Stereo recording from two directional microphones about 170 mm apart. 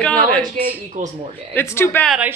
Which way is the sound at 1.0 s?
50° right (ahead or behind).